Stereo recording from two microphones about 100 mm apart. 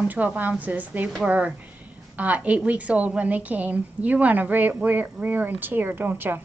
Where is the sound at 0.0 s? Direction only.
15° right (ahead or behind).